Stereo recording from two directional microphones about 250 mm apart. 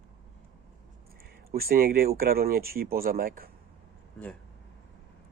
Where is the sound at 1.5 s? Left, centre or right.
Right.